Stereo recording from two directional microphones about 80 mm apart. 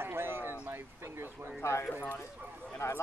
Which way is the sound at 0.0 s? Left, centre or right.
Right.